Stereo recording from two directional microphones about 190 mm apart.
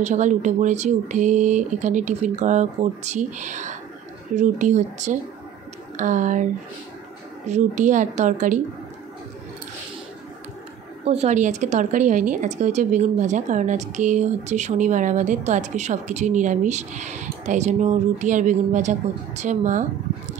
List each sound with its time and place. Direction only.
0.0 s a woman's voice: 40° right (ahead or behind)
7.4 s a woman's voice: 40° right (ahead or behind)
11.1 s a woman's voice: 35° right (ahead or behind)